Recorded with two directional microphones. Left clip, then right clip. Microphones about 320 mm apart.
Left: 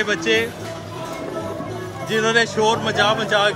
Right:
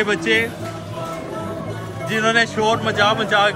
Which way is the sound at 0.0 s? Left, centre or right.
Centre.